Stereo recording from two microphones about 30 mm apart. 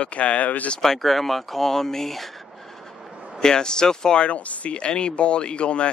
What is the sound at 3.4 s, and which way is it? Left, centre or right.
Speech, left.